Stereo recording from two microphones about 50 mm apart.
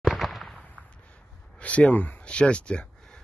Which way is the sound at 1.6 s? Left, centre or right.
Left.